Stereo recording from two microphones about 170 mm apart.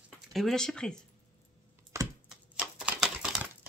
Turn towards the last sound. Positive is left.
turn(degrees=-5)  # may be behind; listen again after turning